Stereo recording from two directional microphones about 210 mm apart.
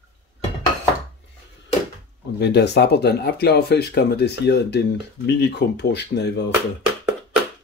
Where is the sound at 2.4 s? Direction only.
55° left (ahead or behind).